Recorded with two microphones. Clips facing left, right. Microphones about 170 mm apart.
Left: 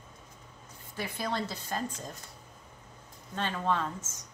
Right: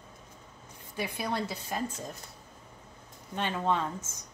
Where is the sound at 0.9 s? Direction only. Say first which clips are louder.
Right 1 dB; 10° right (ahead or behind).